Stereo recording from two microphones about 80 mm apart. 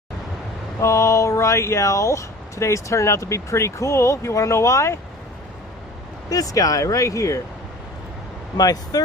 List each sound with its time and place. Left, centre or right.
0.7 s speech: left
6.3 s speech: left
8.5 s speech: left